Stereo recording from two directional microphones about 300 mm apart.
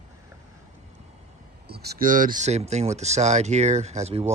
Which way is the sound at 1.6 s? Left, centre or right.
Right.